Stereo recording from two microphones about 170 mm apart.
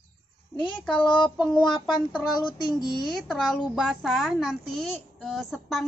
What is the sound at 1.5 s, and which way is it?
Speech, 25° left (ahead or behind).